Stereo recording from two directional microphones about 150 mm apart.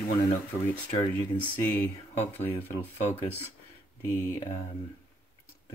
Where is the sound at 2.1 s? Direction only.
45° left (ahead or behind).